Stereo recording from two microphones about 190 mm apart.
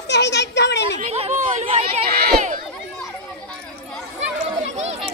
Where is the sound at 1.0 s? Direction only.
35° right (ahead or behind).